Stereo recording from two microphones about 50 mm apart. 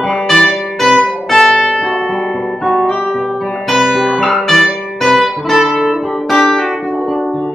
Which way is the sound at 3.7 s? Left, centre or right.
Centre.